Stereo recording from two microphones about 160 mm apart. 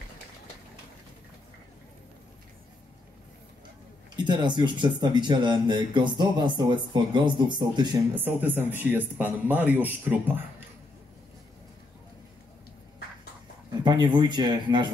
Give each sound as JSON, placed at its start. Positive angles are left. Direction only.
{"t": 4.2, "sound": "speech", "side_deg": -30}
{"t": 8.1, "sound": "speech", "side_deg": -10}
{"t": 13.8, "sound": "speech", "side_deg": -30}